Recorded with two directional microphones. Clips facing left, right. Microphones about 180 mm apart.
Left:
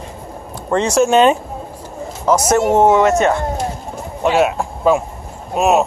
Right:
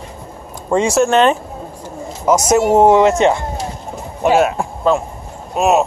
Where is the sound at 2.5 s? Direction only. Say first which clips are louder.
Right 2 dB; 10° right (ahead or behind).